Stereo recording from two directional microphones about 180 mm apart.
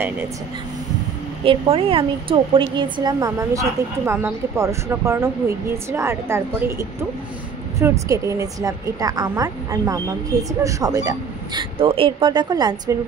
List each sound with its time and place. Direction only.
1.4 s a woman's voice: 30° right (ahead or behind)